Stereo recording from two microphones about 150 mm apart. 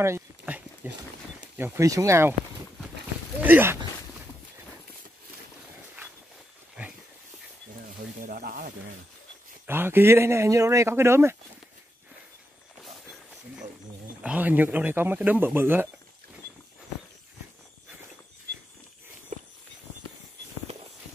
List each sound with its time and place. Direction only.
0.0 s a sound: 15° right (ahead or behind)
1.6 s speech: 20° right (ahead or behind)
3.4 s speech: 15° right (ahead or behind)
8.3 s snake: 75° right (ahead or behind)
9.7 s speech: 15° right (ahead or behind)
14.2 s speech: 10° right (ahead or behind)
19.3 s horse: 50° right (ahead or behind)